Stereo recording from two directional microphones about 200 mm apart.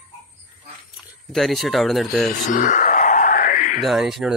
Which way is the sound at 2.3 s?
40° left (ahead or behind).